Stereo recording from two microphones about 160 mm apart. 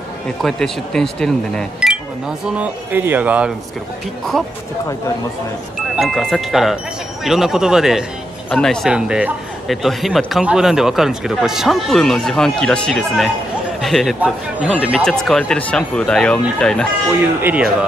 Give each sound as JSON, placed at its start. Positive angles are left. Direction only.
{"t": 0.4, "sound": "speech", "side_deg": 5}
{"t": 5.9, "sound": "speech", "side_deg": 0}
{"t": 17.4, "sound": "speech", "side_deg": -10}